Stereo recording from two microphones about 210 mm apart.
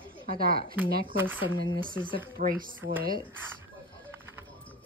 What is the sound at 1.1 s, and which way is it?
Speech, 10° right (ahead or behind).